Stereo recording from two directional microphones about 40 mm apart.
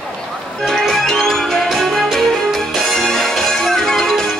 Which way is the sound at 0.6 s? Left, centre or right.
Centre.